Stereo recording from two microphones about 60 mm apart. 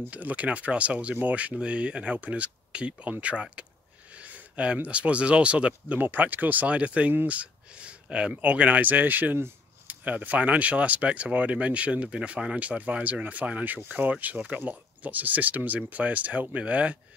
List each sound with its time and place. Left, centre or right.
0.1 s speech: right
4.1 s a sound: right
4.8 s speech: right
5.9 s speech: right